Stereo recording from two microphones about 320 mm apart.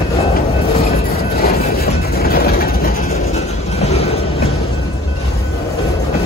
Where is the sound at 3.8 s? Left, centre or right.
Centre.